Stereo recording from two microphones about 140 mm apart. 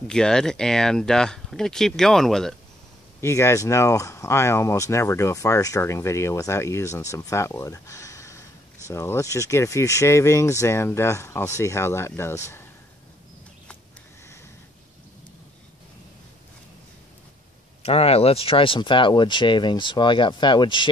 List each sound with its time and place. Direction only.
0.1 s speech: 5° left (ahead or behind)
3.2 s speech: 20° left (ahead or behind)
17.8 s speech: 45° left (ahead or behind)